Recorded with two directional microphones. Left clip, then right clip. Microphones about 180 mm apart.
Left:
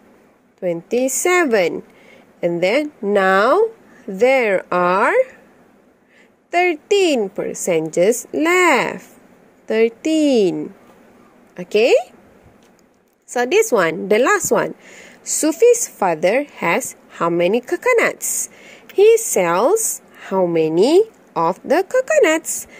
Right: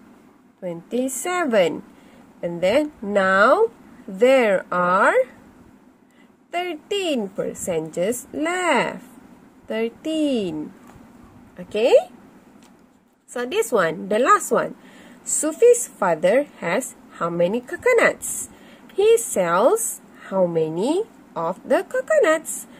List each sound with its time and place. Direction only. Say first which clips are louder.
0.6 s a woman's voice: left 7 dB; 35° left (ahead or behind)
6.5 s a woman's voice: left 9 dB; 30° left (ahead or behind)
11.5 s a woman's voice: left 2 dB; 35° left (ahead or behind)
13.3 s a woman's voice: left 7 dB; 30° left (ahead or behind)